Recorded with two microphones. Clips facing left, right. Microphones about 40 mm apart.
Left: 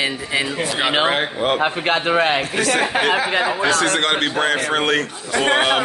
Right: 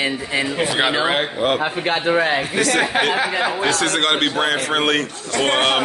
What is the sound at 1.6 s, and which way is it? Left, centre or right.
Speech, left.